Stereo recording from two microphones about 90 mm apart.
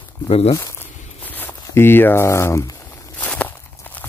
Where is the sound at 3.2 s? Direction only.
15° left (ahead or behind).